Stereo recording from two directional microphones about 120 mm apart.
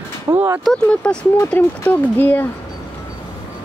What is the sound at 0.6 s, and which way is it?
Speech, 5° left (ahead or behind).